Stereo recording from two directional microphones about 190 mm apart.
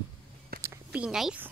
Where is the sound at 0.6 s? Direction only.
5° right (ahead or behind).